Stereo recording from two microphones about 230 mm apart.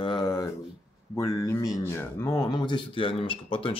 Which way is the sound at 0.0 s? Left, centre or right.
Centre.